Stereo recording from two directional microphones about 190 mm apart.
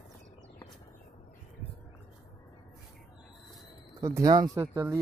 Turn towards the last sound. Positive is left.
turn(degrees=-15)  # may be behind; listen again after turning